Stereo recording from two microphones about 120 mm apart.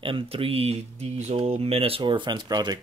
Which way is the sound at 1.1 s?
70° right (ahead or behind).